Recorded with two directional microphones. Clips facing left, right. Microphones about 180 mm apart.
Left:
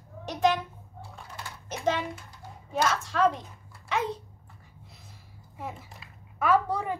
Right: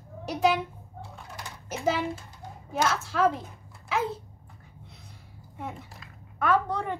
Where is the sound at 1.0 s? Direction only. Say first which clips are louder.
Right 1 dB; 15° right (ahead or behind).